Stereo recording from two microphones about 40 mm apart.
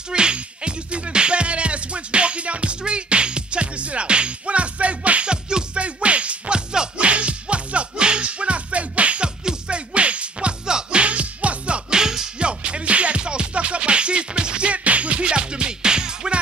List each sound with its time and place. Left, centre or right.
0.1 s music: right
9.4 s music: centre
9.9 s music: right
12.0 s music: centre
12.4 s music: right